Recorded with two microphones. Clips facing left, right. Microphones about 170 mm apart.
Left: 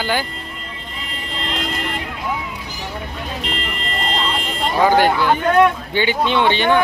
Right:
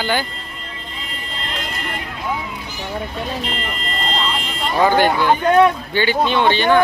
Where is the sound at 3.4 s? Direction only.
75° left (ahead or behind).